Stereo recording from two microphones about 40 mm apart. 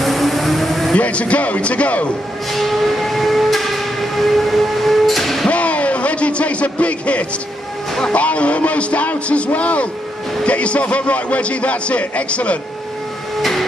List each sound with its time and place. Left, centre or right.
0.0 s vehicle: centre
0.9 s a man's voice: left
2.5 s train: centre
5.5 s a sound: left
8.1 s a man's voice: left
13.4 s a sound: centre